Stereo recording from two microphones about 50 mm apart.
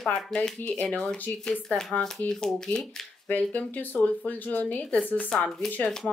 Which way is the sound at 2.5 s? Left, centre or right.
Centre.